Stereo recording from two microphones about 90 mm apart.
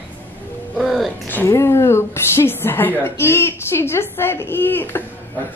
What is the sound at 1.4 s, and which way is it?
A woman's voice, 30° left (ahead or behind).